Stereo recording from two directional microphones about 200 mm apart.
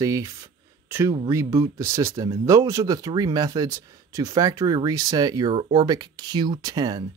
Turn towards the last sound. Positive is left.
turn(degrees=-20)  # may be behind; listen again after turning